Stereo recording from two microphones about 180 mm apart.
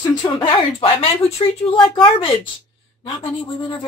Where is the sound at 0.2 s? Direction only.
30° left (ahead or behind).